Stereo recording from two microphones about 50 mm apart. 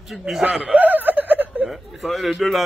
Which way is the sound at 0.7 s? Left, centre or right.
Right.